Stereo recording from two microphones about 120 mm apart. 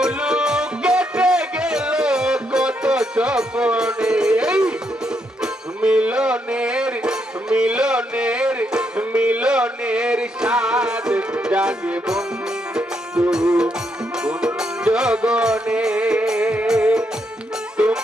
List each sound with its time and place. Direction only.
0.0 s music: 5° right (ahead or behind)